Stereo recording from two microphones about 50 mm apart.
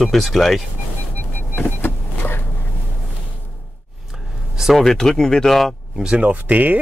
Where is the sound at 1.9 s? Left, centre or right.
Left.